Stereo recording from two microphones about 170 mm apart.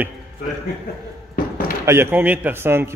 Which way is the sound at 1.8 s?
15° right (ahead or behind).